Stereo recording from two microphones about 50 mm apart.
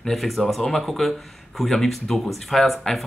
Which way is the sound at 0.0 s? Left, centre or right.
Centre.